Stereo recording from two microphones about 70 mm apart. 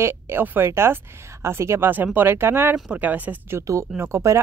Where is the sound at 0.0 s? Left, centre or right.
Right.